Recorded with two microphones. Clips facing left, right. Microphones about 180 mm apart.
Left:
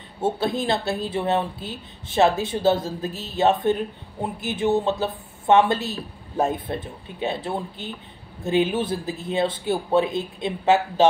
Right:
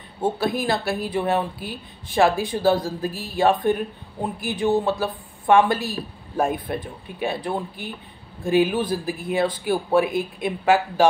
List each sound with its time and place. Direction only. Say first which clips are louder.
0.4 s speech: even; 25° left (ahead or behind)